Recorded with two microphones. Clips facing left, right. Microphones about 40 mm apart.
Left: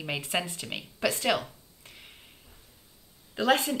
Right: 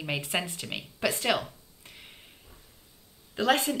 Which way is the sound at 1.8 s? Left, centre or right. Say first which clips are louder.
Even; centre.